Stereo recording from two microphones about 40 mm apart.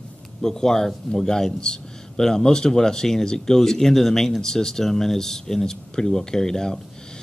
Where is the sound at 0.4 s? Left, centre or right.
Centre.